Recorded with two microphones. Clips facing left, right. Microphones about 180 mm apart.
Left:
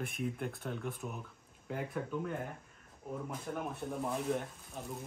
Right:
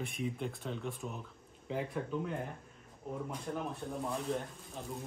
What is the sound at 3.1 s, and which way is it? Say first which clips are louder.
Speech: right 1 dB; 5° left (ahead or behind).